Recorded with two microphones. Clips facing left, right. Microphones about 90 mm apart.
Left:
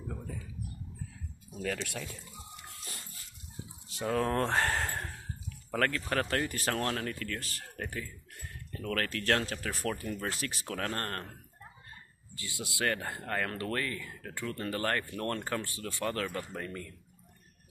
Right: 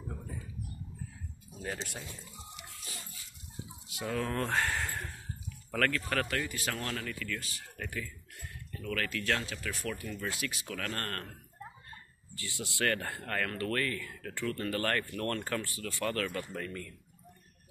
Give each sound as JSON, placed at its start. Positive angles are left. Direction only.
{"t": 2.7, "sound": "music", "side_deg": 55}
{"t": 3.9, "sound": "speech", "side_deg": 35}
{"t": 12.4, "sound": "speech", "side_deg": 20}